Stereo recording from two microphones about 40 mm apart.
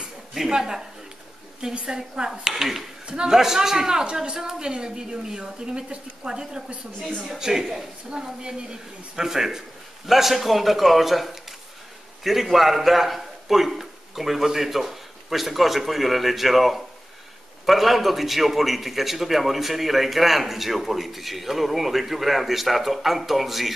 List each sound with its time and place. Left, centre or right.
0.5 s speech: centre
1.9 s speech: centre
4.0 s a woman's voice: right
7.3 s a man's voice: centre